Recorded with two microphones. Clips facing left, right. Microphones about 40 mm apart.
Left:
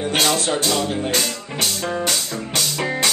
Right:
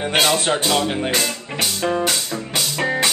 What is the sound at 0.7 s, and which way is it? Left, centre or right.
Music, right.